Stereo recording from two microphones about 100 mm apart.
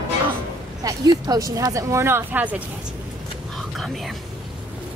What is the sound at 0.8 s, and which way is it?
Speech, 40° right (ahead or behind).